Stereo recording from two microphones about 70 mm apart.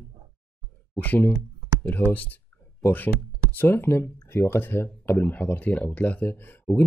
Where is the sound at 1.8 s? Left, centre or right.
Left.